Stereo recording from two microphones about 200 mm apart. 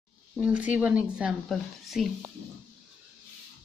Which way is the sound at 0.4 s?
5° right (ahead or behind).